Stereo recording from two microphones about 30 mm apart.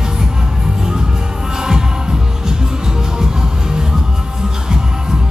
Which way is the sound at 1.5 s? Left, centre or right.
Right.